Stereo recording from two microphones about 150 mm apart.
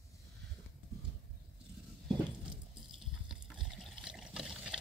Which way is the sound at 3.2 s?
Centre (ahead or behind).